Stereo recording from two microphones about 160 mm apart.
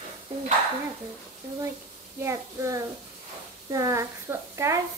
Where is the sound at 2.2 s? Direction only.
20° right (ahead or behind).